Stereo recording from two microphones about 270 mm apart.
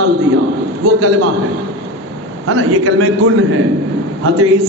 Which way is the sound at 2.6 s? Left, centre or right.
Right.